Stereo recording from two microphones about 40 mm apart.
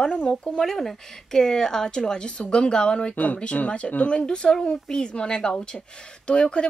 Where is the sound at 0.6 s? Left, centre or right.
Centre.